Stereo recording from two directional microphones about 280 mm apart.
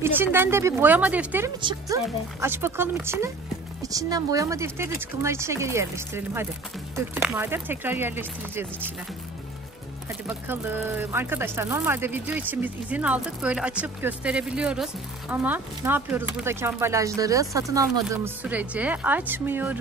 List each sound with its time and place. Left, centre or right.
0.0 s speech: centre
1.6 s speech: centre
10.2 s speech: centre